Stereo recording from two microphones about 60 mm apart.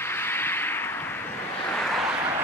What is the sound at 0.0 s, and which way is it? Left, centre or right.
Vehicle, left.